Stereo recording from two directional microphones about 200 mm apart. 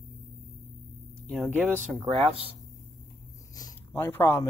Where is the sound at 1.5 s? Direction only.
10° right (ahead or behind).